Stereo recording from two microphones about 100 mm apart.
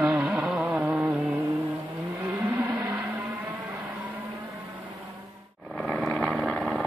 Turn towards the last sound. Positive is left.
turn(degrees=0)  # may be behind; listen again after turning